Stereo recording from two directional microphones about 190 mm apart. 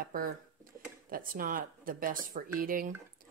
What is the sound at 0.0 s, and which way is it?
Speech, 50° right (ahead or behind).